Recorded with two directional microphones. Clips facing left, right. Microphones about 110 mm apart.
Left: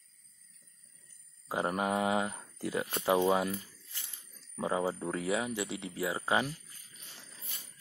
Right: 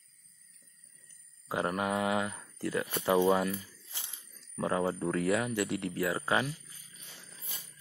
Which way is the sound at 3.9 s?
90° right.